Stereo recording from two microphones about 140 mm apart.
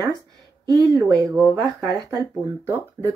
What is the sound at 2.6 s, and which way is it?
Speech, 20° right (ahead or behind).